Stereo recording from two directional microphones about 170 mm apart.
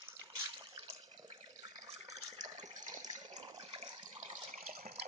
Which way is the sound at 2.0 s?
20° right (ahead or behind).